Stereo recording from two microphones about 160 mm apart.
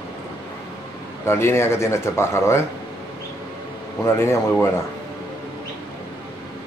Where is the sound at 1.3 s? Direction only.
15° left (ahead or behind).